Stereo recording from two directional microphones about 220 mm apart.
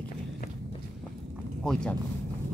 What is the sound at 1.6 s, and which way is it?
Speech, 5° left (ahead or behind).